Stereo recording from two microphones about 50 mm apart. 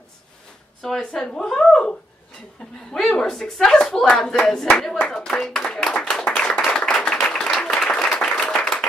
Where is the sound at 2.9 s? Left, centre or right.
Centre.